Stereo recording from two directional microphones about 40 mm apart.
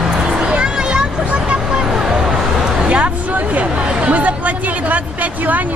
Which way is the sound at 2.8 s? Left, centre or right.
Right.